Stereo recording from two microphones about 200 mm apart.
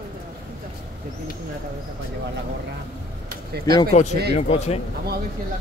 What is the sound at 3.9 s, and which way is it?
Speech, 35° left (ahead or behind).